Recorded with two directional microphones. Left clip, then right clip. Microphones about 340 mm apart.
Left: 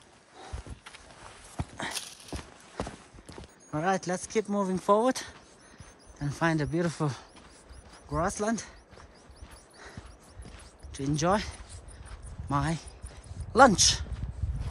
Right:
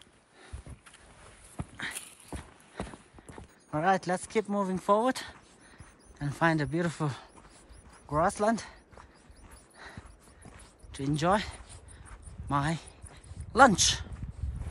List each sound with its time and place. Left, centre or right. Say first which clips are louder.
1.6 s clip-clop: left 3 dB; centre
3.7 s speech: right 2 dB; centre
9.8 s clip-clop: right 1 dB; centre
10.9 s speech: even; centre